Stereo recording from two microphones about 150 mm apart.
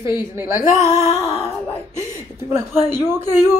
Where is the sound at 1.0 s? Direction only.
20° left (ahead or behind).